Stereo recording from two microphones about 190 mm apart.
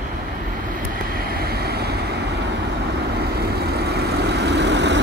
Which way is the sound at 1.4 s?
55° right (ahead or behind).